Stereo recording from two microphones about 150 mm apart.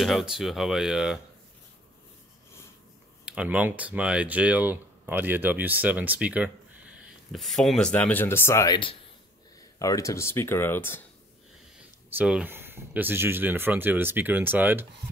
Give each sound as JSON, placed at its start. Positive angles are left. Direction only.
{"t": 0.0, "sound": "speech", "side_deg": 0}
{"t": 3.3, "sound": "speech", "side_deg": -10}
{"t": 9.8, "sound": "speech", "side_deg": 20}
{"t": 12.1, "sound": "speech", "side_deg": -10}